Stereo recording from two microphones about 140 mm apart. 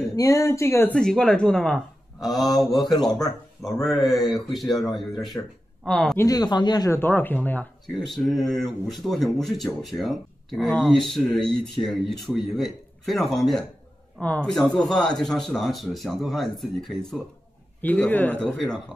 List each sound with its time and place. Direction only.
0.1 s speech: 25° left (ahead or behind)
0.9 s speech: 5° left (ahead or behind)
5.1 s speech: 30° left (ahead or behind)
5.9 s speech: 5° left (ahead or behind)
6.1 s speech: 30° left (ahead or behind)
6.9 s speech: 15° left (ahead or behind)
7.9 s speech: centre (ahead or behind)
17.8 s speech: 10° left (ahead or behind)